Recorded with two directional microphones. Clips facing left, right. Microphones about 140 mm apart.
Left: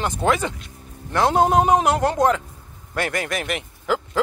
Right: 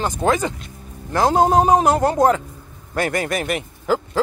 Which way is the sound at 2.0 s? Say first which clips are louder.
Right 2 dB; 5° right (ahead or behind).